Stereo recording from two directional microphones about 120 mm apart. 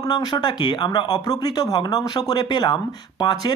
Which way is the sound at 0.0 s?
35° left (ahead or behind).